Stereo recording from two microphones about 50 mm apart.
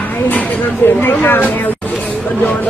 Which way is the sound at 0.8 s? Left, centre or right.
Left.